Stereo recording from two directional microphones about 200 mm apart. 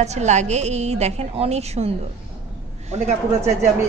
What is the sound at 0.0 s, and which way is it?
A woman's voice, 35° right (ahead or behind).